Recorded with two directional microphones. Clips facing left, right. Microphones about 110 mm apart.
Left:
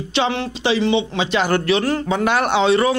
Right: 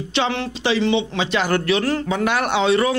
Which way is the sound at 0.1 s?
15° left (ahead or behind).